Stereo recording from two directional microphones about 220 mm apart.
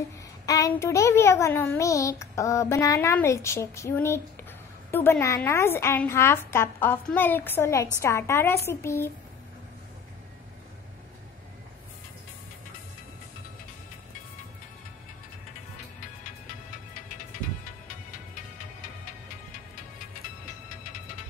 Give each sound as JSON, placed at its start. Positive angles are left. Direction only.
{"t": 0.5, "sound": "a child's voice", "side_deg": 15}